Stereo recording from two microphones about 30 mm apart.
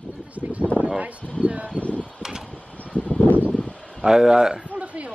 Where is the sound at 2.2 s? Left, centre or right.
Centre.